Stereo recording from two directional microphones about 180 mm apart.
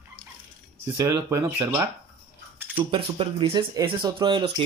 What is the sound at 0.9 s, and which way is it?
Speech, 15° right (ahead or behind).